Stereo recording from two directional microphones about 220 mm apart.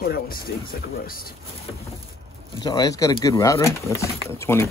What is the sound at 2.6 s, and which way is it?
Speech, 15° left (ahead or behind).